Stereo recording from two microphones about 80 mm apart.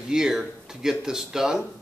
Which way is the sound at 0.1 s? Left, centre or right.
Centre.